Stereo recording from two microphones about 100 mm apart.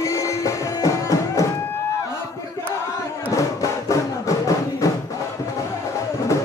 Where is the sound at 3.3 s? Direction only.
35° left (ahead or behind).